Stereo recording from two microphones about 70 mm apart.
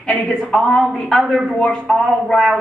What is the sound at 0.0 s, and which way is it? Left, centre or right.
A woman's voice, centre.